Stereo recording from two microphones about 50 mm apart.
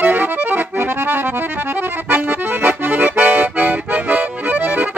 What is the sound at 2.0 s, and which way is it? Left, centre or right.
Accordion, right.